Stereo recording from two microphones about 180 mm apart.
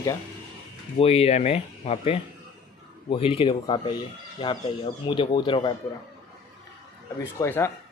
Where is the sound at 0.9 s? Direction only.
35° left (ahead or behind).